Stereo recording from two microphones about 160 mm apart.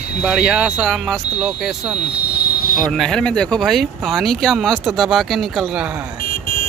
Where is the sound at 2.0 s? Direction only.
90° left.